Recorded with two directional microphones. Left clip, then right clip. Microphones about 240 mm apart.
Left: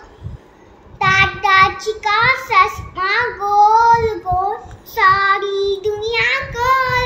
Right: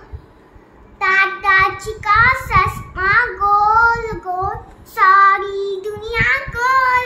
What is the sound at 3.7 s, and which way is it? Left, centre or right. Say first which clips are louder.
Speech: left 2 dB; right.